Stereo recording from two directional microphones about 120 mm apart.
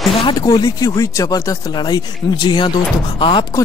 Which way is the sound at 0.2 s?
40° left (ahead or behind).